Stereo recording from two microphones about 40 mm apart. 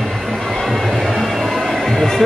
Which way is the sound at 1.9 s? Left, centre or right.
Centre.